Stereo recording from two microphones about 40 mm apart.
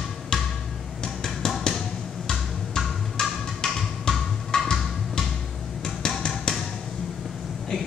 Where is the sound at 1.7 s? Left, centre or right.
Centre.